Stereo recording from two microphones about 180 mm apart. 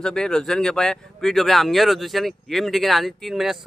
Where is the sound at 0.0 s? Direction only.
5° left (ahead or behind).